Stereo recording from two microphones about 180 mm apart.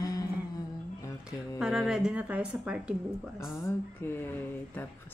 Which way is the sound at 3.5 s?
15° left (ahead or behind).